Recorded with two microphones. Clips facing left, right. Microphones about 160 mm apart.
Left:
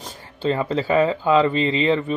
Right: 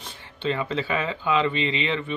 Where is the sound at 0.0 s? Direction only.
40° left (ahead or behind).